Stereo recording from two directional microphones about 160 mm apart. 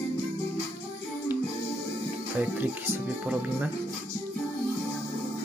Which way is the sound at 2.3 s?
10° right (ahead or behind).